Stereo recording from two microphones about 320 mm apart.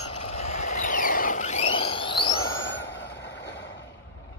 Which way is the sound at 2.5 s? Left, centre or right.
Left.